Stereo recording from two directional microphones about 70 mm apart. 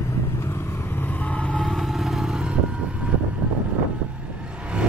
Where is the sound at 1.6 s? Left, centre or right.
Centre.